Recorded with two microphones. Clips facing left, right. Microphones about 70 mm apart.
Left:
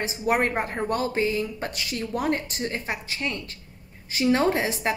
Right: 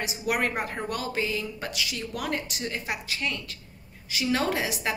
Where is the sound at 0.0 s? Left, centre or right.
Left.